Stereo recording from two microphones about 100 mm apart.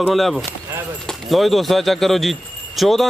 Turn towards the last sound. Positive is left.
turn(degrees=0)  # may be behind; listen again after turning